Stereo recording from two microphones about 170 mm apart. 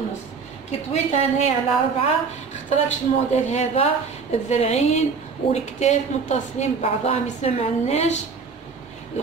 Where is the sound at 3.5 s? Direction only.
40° left (ahead or behind).